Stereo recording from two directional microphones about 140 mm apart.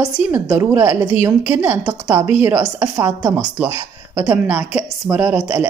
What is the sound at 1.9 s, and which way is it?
Speech, 25° right (ahead or behind).